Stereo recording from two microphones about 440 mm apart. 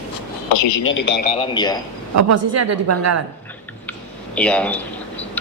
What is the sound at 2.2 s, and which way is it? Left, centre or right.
A woman's voice, right.